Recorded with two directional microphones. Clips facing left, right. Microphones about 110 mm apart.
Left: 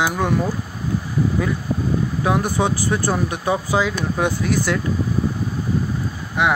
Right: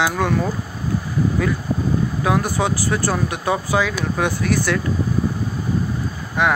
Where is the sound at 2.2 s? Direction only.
20° left (ahead or behind).